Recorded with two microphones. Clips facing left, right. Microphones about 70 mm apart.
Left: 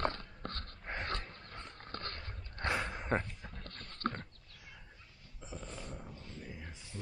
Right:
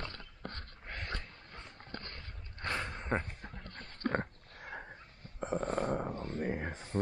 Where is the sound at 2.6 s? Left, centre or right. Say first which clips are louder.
Left 1 dB; centre.